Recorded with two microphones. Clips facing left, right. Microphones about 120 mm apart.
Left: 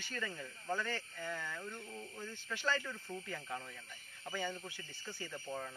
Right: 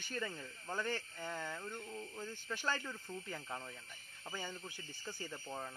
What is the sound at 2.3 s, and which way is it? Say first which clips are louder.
Speech: even; 45° right (ahead or behind).